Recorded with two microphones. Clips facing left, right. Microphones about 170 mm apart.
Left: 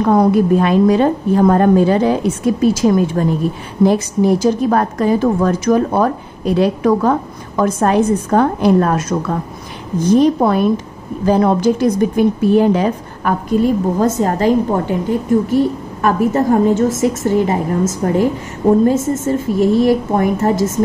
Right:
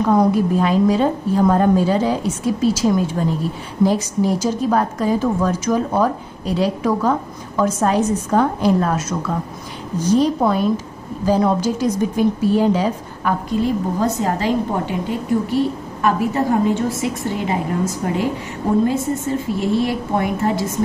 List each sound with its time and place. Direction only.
0.3 s a woman's voice: 60° left (ahead or behind)
10.0 s a woman's voice: 55° left (ahead or behind)